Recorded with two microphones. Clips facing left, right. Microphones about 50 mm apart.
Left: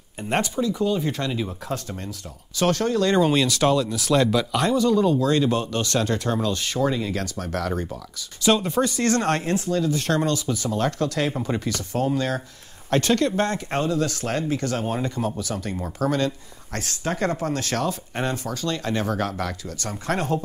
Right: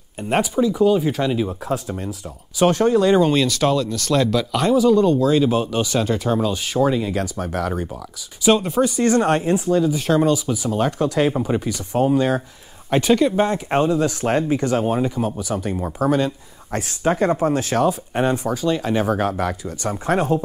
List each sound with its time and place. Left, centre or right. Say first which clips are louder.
0.2 s speech: right 5 dB; centre
2.6 s speech: right 5 dB; centre
3.2 s speech: right 2 dB; centre